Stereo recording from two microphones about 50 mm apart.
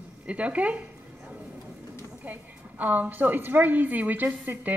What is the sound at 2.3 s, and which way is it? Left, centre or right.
A woman's voice, right.